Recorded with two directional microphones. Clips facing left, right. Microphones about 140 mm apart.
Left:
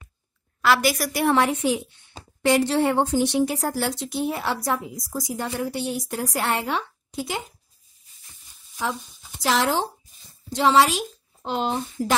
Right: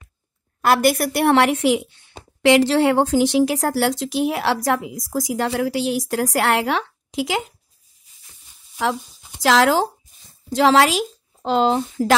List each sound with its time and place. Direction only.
0.6 s a woman's voice: 50° right (ahead or behind); by 7.5 s 90° right
9.4 s a woman's voice: 90° right